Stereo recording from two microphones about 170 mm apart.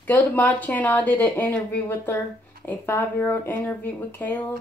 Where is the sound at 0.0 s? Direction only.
10° left (ahead or behind).